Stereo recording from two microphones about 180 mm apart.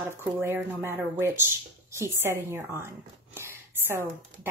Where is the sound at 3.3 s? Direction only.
15° right (ahead or behind).